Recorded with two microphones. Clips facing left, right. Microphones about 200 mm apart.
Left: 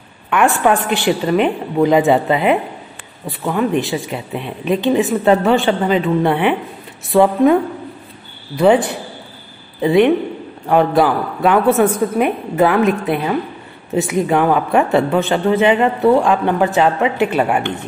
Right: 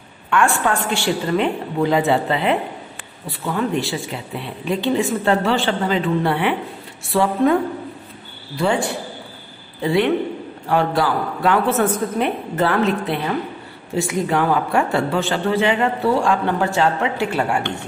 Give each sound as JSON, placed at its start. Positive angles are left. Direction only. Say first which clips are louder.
{"t": 0.3, "sound": "a woman's voice", "louder": "left 4 dB", "side_deg": 20}
{"t": 8.5, "sound": "a woman's voice", "louder": "left 7 dB", "side_deg": 20}